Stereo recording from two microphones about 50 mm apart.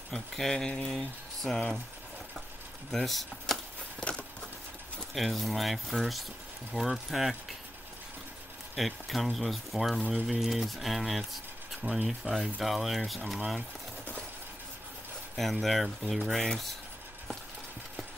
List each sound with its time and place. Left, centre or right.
0.1 s speech: centre
0.8 s speech: centre
2.9 s speech: centre
5.1 s speech: centre
8.7 s speech: centre
15.3 s speech: centre